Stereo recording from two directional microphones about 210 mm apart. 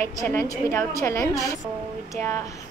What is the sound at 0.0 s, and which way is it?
A child's voice, 15° left (ahead or behind).